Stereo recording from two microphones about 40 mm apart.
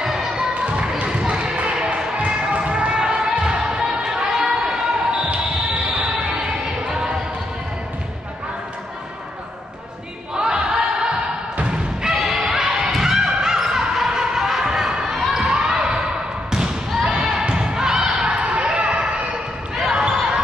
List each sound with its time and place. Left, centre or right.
0.0 s basketball bounce: centre
0.6 s basketball bounce: right
4.3 s chatter: centre
5.9 s basketball bounce: centre
10.3 s choir: centre
12.1 s music: centre
15.5 s basketball bounce: centre
17.2 s music: centre
18.2 s basketball bounce: right